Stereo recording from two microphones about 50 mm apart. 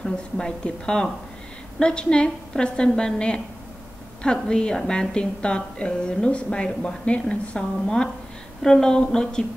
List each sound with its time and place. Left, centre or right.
0.0 s a woman's voice: centre